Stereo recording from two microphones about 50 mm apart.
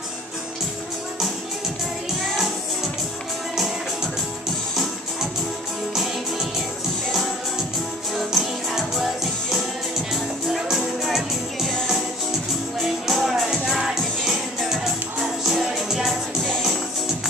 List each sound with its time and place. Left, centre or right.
3.5 s music: centre
8.1 s music: centre
12.8 s music: centre
16.1 s music: centre